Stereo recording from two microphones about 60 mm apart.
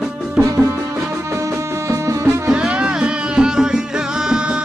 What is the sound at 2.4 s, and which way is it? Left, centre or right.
Music, centre.